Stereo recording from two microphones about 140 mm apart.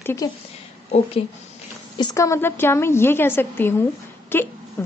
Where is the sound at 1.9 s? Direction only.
25° left (ahead or behind).